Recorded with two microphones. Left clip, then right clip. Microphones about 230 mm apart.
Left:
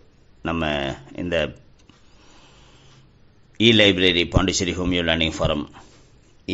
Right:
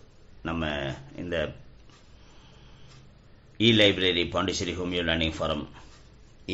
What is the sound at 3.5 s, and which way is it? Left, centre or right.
A man's voice, left.